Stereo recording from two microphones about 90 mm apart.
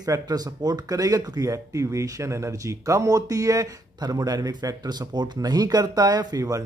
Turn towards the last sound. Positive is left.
turn(degrees=-40)  # may be behind; listen again after turning